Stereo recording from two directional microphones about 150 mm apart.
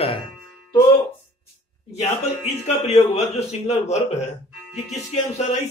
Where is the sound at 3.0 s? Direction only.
45° left (ahead or behind).